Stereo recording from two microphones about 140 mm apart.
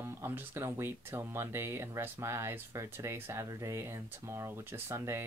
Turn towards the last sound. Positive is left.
turn(degrees=-20)  # may be behind; listen again after turning